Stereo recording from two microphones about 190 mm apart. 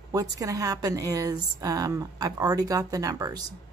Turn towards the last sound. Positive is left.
turn(degrees=-20)  # may be behind; listen again after turning